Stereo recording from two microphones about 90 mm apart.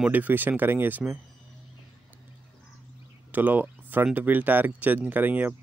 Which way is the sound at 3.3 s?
20° right (ahead or behind).